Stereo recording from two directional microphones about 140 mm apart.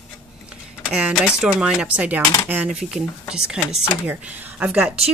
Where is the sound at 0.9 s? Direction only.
5° right (ahead or behind).